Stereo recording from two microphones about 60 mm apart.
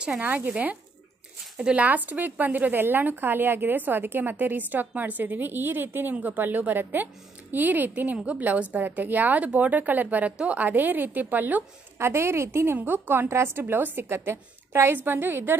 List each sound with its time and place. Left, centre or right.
0.2 s speech: right
12.0 s a woman's voice: right
12.7 s speech: right
13.3 s a woman's voice: right